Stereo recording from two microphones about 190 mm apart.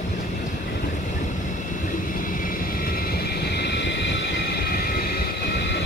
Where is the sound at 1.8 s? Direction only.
45° left (ahead or behind).